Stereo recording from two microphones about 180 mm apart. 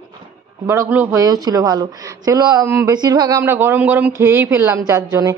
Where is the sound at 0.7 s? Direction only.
15° right (ahead or behind).